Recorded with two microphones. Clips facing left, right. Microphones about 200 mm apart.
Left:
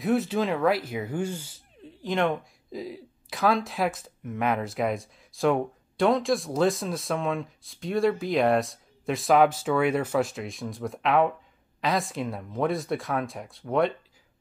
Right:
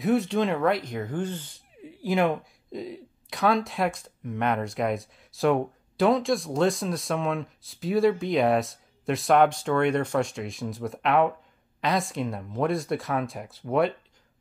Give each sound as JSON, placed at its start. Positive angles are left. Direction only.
{"t": 0.0, "sound": "speech", "side_deg": 0}
{"t": 1.8, "sound": "speech", "side_deg": -10}